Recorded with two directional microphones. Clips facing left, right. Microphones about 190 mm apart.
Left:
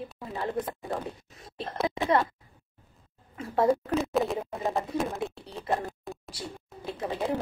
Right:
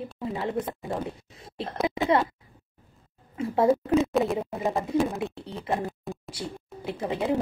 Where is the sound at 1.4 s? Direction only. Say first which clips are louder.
Right 3 dB; 25° right (ahead or behind).